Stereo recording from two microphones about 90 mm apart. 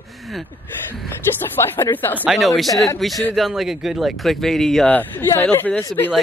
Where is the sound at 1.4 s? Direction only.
25° left (ahead or behind).